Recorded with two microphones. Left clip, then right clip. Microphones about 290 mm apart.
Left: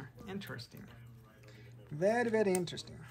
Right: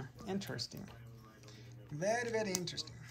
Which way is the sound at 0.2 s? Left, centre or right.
Centre.